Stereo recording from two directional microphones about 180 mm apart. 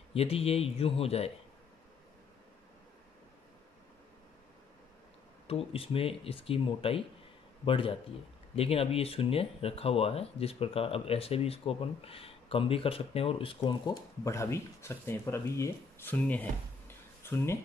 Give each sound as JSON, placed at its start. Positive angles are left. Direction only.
{"t": 0.1, "sound": "speech", "side_deg": 35}
{"t": 5.5, "sound": "speech", "side_deg": 30}